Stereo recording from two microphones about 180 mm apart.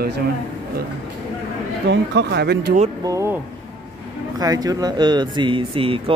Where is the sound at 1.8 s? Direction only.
75° right (ahead or behind).